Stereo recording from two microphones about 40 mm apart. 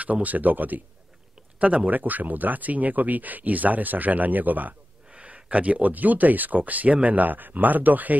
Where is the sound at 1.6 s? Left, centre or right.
Right.